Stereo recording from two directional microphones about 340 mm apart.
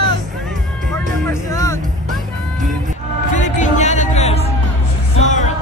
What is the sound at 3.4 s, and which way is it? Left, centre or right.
Music, left.